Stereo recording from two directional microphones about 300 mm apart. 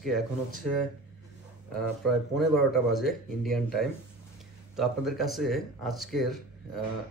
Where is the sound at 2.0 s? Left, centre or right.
Centre.